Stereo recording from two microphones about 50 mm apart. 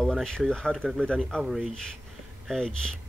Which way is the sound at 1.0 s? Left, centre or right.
Centre.